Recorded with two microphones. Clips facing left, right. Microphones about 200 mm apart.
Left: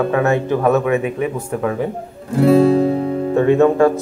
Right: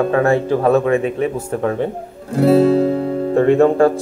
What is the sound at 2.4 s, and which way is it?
Guitar, 35° right (ahead or behind).